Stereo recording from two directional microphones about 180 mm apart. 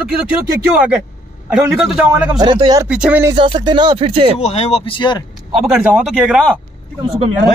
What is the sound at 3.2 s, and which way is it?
Speech, 25° right (ahead or behind).